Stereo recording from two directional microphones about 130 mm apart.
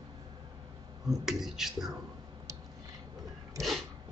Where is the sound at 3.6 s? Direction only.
25° right (ahead or behind).